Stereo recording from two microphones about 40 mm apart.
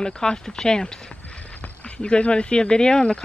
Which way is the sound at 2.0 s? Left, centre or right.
Left.